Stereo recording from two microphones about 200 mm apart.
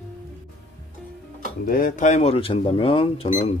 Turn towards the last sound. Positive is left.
turn(degrees=40)  # may be behind; listen again after turning